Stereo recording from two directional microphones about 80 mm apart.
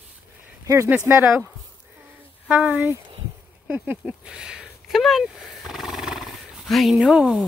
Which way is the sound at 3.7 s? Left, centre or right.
Centre.